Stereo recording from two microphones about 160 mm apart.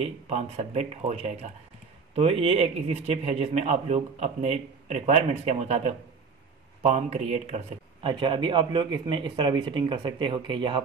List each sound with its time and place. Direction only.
0.0 s a man's voice: 40° right (ahead or behind)
8.0 s speech: 30° right (ahead or behind)